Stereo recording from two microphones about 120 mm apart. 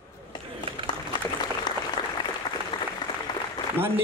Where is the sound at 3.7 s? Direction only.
20° right (ahead or behind).